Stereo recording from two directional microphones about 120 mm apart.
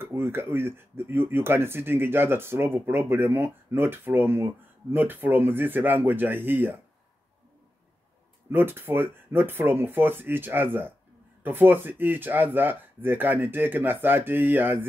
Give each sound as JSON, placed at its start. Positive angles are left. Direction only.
{"t": 0.0, "sound": "speech", "side_deg": -20}
{"t": 8.5, "sound": "speech", "side_deg": -15}